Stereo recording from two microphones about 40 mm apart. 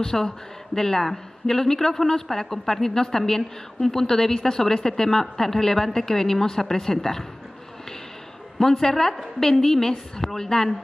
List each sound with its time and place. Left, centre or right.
0.0 s a man's voice: centre
8.5 s a man's voice: centre